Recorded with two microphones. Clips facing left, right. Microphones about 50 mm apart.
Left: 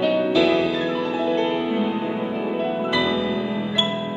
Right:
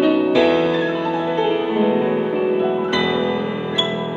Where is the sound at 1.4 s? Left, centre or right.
Centre.